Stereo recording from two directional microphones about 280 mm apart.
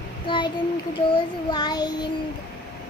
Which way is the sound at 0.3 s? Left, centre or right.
Centre.